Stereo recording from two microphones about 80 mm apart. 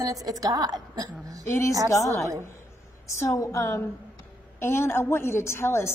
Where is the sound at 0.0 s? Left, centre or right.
Right.